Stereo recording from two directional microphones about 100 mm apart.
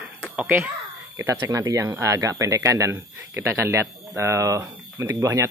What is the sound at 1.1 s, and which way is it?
Speech, 35° right (ahead or behind).